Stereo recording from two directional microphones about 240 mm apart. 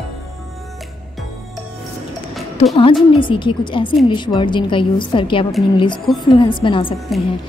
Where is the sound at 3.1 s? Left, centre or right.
Left.